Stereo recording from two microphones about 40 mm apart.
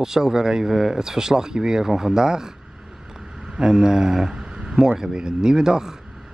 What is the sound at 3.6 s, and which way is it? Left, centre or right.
Speech, centre.